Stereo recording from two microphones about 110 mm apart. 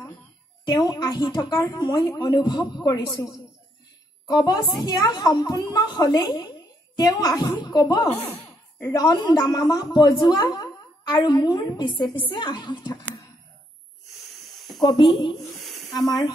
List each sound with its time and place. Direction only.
0.7 s a woman's voice: 40° left (ahead or behind)
4.3 s a woman's voice: 40° left (ahead or behind)
8.5 s a sound: 15° left (ahead or behind)
8.9 s a woman's voice: 35° left (ahead or behind)
14.0 s wheeze: centre (ahead or behind)
15.1 s speech: 45° left (ahead or behind)
15.6 s a sound: centre (ahead or behind)